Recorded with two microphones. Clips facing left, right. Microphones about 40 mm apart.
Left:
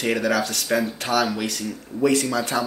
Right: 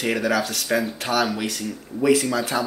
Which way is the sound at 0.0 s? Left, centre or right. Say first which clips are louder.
Even; centre.